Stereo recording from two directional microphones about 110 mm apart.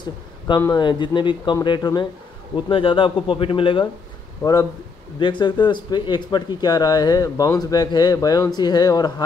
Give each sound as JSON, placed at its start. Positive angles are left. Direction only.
{"t": 0.7, "sound": "speech", "side_deg": 45}
{"t": 2.5, "sound": "speech", "side_deg": 50}
{"t": 5.2, "sound": "speech", "side_deg": 45}